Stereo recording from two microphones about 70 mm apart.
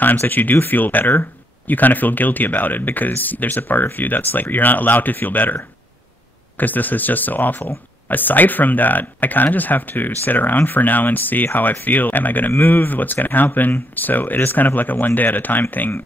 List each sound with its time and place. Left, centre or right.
0.0 s speech: left